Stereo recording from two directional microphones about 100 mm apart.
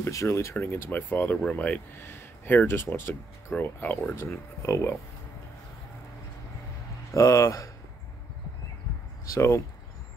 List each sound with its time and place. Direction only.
0.0 s speech: 30° left (ahead or behind)
7.1 s speech: 30° left (ahead or behind)
9.2 s speech: 30° left (ahead or behind)